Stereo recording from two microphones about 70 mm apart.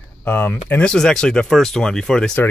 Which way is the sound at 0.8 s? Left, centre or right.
Centre.